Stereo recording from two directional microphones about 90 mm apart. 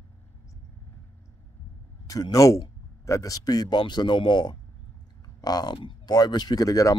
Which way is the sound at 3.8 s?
60° left (ahead or behind).